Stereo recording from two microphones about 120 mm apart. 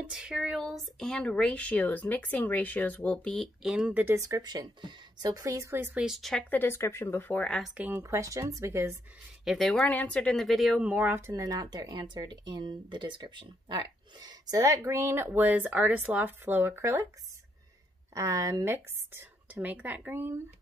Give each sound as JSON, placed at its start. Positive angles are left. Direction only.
{"t": 0.0, "sound": "speech", "side_deg": -5}
{"t": 3.7, "sound": "speech", "side_deg": -10}
{"t": 4.0, "sound": "speech", "side_deg": -25}
{"t": 5.9, "sound": "speech", "side_deg": 0}
{"t": 6.5, "sound": "speech", "side_deg": 20}
{"t": 7.7, "sound": "speech", "side_deg": -15}
{"t": 8.0, "sound": "speech", "side_deg": -25}
{"t": 9.4, "sound": "speech", "side_deg": 0}
{"t": 10.8, "sound": "speech", "side_deg": -15}
{"t": 18.1, "sound": "speech", "side_deg": -25}